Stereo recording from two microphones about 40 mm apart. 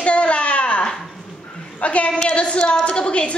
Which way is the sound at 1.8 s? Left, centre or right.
Left.